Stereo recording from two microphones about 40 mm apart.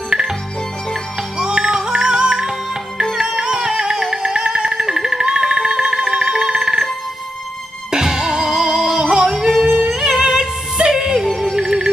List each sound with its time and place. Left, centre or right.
1.4 s music: right
3.0 s music: centre
3.3 s music: right
4.3 s music: right
7.9 s music: centre
8.9 s yodeling: centre
9.7 s music: right
9.9 s music: centre